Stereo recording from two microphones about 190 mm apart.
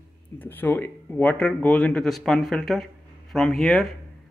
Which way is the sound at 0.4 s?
10° left (ahead or behind).